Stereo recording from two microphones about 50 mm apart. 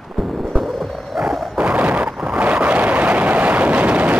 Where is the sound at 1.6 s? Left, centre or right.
Right.